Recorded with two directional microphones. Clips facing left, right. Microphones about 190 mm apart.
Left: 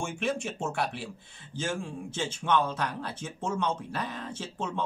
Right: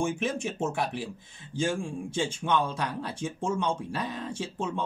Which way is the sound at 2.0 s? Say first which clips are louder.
Right 1 dB; 10° right (ahead or behind).